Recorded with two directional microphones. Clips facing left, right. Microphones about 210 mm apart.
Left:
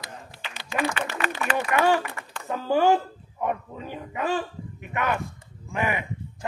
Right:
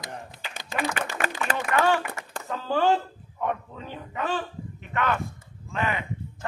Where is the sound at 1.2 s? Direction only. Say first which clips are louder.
Even; 50° right (ahead or behind).